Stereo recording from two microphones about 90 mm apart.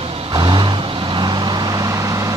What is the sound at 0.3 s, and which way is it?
Vehicle, 60° right (ahead or behind).